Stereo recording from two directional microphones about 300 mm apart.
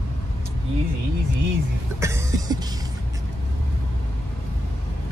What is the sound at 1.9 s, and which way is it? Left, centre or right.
Vehicle, centre.